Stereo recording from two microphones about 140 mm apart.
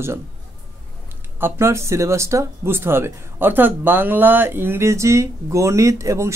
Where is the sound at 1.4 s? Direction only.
20° right (ahead or behind).